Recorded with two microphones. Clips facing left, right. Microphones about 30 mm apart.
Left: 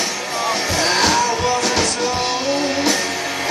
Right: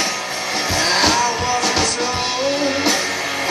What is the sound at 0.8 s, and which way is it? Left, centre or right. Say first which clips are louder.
Music: even; centre.